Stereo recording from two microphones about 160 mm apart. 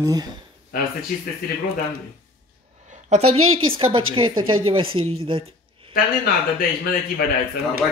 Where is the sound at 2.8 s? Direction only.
45° right (ahead or behind).